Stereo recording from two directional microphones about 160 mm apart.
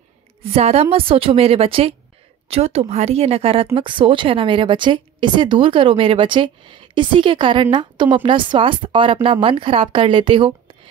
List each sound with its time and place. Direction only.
0.4 s a woman's voice: 40° right (ahead or behind)